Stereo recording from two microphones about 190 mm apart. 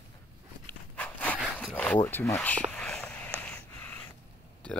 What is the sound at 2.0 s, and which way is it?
Speech, 15° left (ahead or behind).